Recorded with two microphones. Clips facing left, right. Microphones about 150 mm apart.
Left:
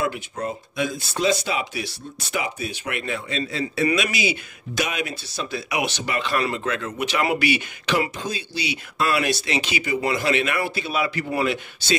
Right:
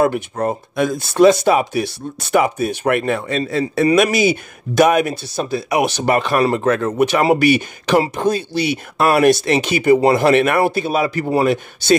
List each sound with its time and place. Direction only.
0.0 s speech: 55° right (ahead or behind)